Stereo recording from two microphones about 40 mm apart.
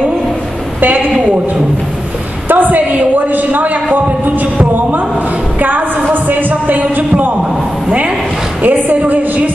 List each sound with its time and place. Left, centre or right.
2.4 s a woman's voice: right
5.6 s a sound: right
8.6 s a woman's voice: right